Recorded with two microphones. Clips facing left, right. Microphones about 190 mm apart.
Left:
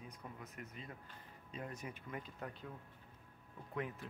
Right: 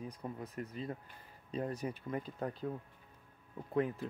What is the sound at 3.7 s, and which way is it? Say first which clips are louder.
Speech: right 9 dB; 35° right (ahead or behind).